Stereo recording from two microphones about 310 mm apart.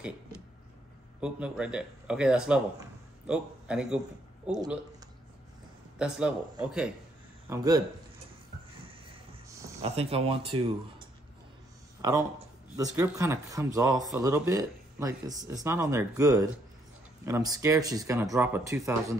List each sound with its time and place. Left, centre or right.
1.2 s speech: centre
5.9 s speech: centre
9.5 s speech: centre
12.7 s speech: centre